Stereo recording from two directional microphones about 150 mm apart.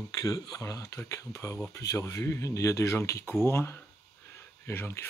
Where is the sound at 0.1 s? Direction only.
25° left (ahead or behind).